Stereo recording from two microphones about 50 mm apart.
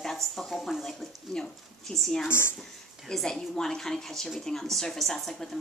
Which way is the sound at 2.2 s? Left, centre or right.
Left.